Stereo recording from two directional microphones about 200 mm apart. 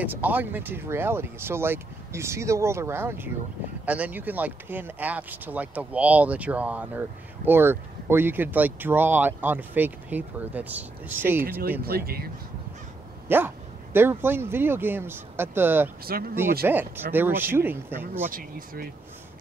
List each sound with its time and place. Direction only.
0.0 s speech: 10° right (ahead or behind)
11.8 s speech: 50° right (ahead or behind)
13.3 s speech: 10° right (ahead or behind)
16.1 s speech: 50° right (ahead or behind)
16.6 s speech: 10° right (ahead or behind)
18.3 s speech: 45° right (ahead or behind)